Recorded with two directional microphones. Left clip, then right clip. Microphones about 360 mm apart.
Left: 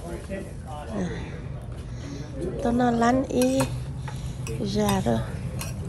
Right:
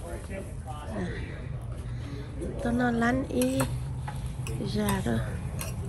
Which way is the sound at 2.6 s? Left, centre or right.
Centre.